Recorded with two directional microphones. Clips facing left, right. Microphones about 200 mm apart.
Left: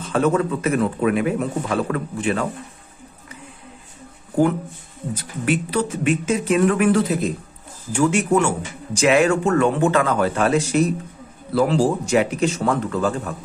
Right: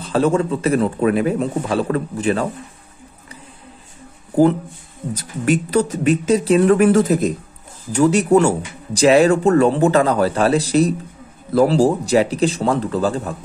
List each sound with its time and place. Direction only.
0.0 s speech: 30° right (ahead or behind)
5.1 s speech: 40° right (ahead or behind)